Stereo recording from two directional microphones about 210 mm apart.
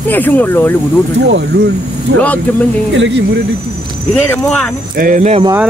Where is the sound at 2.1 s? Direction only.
50° right (ahead or behind).